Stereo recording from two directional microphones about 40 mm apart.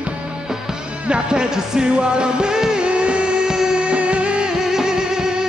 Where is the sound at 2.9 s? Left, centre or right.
Right.